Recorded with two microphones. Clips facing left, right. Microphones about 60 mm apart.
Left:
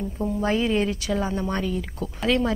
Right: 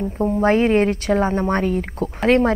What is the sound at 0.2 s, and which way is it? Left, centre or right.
A woman's voice, right.